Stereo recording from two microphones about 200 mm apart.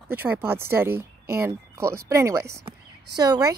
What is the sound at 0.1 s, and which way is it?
Speech, 10° right (ahead or behind).